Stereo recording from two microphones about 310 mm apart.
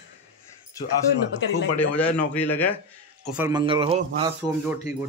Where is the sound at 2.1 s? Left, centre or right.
Centre.